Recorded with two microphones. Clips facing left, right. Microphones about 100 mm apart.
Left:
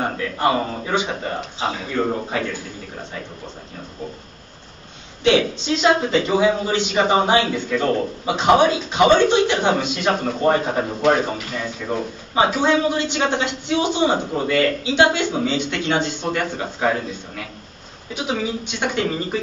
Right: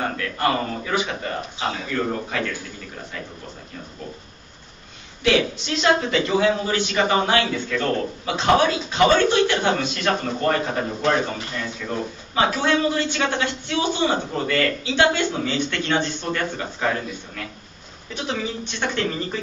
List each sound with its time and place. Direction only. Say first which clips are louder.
0.0 s a man's voice: left 3 dB; 20° left (ahead or behind)
5.2 s a man's voice: left 3 dB; 25° left (ahead or behind)
18.1 s a man's voice: left 3 dB; 10° left (ahead or behind)